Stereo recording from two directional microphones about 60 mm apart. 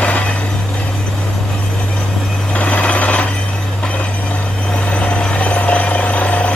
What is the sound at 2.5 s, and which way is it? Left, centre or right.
Vehicle, left.